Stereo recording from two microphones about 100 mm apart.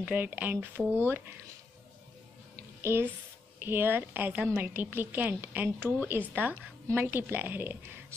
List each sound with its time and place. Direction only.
0.0 s speech: 15° right (ahead or behind)
2.8 s a child's voice: 25° right (ahead or behind)